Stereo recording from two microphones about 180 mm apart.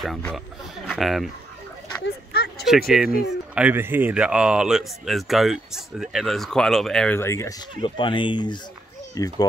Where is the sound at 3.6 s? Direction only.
10° right (ahead or behind).